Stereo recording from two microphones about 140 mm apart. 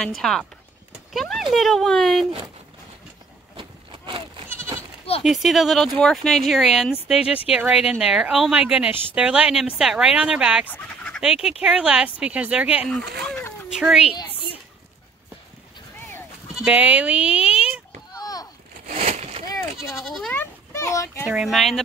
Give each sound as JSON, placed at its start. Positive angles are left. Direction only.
{"t": 0.2, "sound": "speech", "side_deg": 5}
{"t": 3.5, "sound": "a sound", "side_deg": -35}
{"t": 4.5, "sound": "goat", "side_deg": -15}
{"t": 5.2, "sound": "a woman's voice", "side_deg": 0}
{"t": 10.7, "sound": "fowl", "side_deg": 5}
{"t": 11.2, "sound": "a woman's voice", "side_deg": -5}
{"t": 16.5, "sound": "speech", "side_deg": -10}
{"t": 18.1, "sound": "a sound", "side_deg": 25}
{"t": 18.9, "sound": "a sound", "side_deg": -50}
{"t": 20.0, "sound": "speech", "side_deg": 0}
{"t": 20.3, "sound": "a child's voice", "side_deg": 20}
{"t": 21.3, "sound": "speech", "side_deg": -5}